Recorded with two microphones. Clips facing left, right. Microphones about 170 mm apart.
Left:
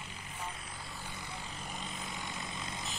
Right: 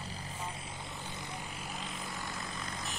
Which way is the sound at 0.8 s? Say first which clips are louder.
Right 2 dB; 20° right (ahead or behind).